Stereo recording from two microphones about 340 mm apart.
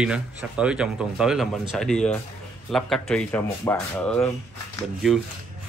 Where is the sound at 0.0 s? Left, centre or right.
Centre.